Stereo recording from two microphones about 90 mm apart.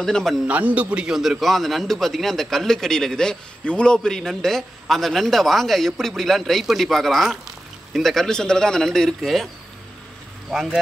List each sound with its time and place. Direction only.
0.0 s a man's voice: 5° left (ahead or behind)
0.5 s a man's voice: 15° right (ahead or behind); by 9.5 s centre (ahead or behind)
10.5 s a man's voice: centre (ahead or behind)